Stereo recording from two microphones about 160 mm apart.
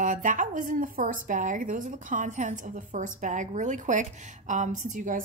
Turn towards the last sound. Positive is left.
turn(degrees=-55)  # may be behind; listen again after turning